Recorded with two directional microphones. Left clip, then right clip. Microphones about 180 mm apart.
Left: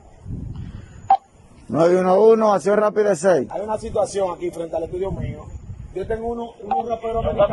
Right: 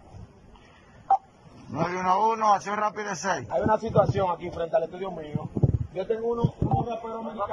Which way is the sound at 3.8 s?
30° left (ahead or behind).